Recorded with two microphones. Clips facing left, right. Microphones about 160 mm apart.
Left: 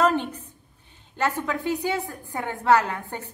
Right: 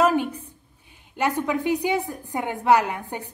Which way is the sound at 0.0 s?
10° right (ahead or behind).